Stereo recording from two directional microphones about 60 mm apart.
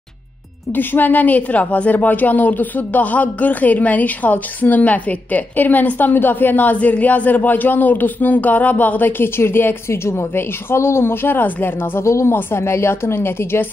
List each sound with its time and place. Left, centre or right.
0.7 s a woman's voice: left
9.2 s a woman's voice: left
12.0 s a woman's voice: left